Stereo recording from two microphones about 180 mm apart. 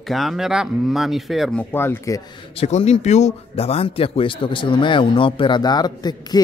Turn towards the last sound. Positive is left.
turn(degrees=20)  # may be behind; listen again after turning